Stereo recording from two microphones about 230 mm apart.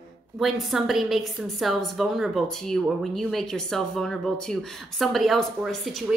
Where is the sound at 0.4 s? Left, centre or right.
Centre.